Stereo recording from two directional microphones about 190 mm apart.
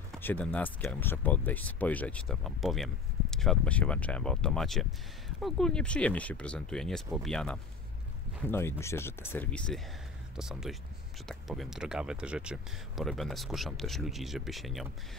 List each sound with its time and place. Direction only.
0.2 s speech: 10° left (ahead or behind)